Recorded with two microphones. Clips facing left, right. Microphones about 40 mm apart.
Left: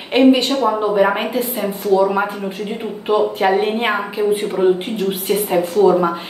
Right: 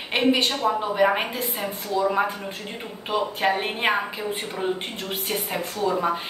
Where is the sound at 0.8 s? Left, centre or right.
Centre.